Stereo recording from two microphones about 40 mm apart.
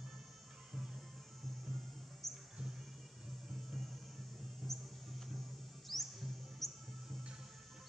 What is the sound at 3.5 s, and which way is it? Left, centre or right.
Music, centre.